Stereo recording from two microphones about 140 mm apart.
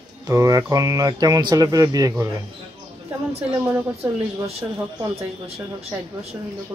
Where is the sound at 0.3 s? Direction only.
20° right (ahead or behind).